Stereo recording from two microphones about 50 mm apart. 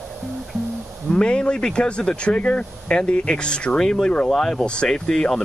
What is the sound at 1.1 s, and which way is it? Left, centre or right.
Speech, centre.